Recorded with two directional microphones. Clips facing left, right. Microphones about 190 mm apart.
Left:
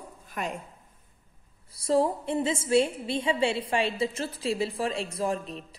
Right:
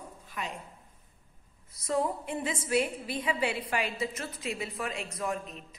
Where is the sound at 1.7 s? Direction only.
30° left (ahead or behind).